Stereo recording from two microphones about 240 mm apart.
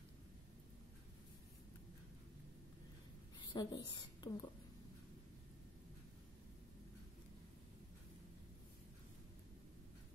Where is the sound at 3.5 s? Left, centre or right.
Centre.